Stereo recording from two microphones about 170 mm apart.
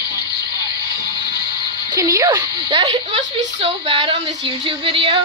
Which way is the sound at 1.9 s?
20° right (ahead or behind).